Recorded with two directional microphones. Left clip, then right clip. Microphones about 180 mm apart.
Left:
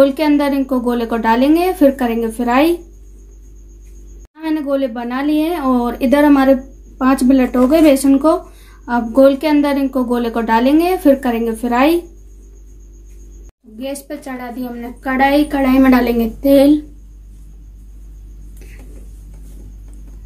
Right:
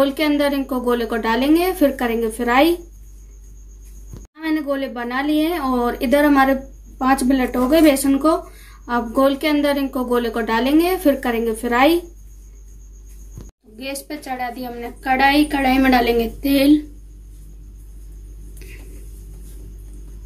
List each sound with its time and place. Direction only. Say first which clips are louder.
0.0 s speech: left 5 dB; 40° left (ahead or behind)
4.4 s speech: left 4 dB; 45° left (ahead or behind)
13.7 s a woman's voice: left 4 dB; 35° left (ahead or behind)